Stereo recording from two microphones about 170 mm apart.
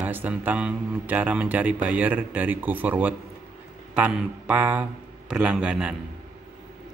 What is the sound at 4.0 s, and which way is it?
A man's voice, 5° right (ahead or behind).